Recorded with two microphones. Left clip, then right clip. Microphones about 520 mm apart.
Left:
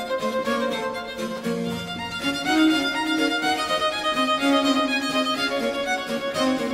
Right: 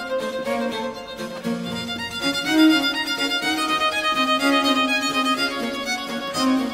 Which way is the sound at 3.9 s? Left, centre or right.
Right.